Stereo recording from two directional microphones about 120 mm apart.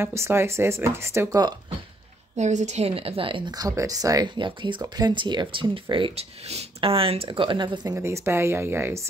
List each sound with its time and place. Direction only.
0.0 s speech: 20° right (ahead or behind)
2.3 s a woman's voice: 75° right (ahead or behind); by 3.5 s 45° right (ahead or behind)
3.5 s speech: 30° right (ahead or behind)
4.4 s speech: 45° right (ahead or behind)
7.2 s speech: 40° right (ahead or behind); by 9.1 s 20° right (ahead or behind)